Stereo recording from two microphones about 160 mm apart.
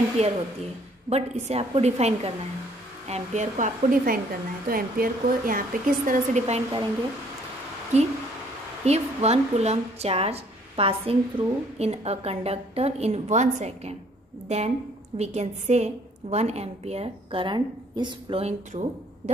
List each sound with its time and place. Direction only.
0.2 s a woman's voice: 45° right (ahead or behind)
6.4 s a woman's voice: 40° right (ahead or behind)
7.9 s a woman's voice: 45° right (ahead or behind)
18.7 s speech: 45° right (ahead or behind)